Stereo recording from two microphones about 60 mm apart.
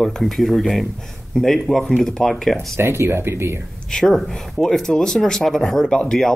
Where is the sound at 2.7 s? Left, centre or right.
Right.